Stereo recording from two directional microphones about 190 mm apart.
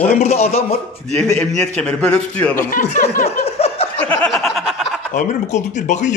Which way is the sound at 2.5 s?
45° left (ahead or behind).